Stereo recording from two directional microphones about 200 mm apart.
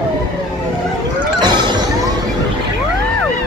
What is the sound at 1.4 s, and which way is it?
Music, 20° right (ahead or behind).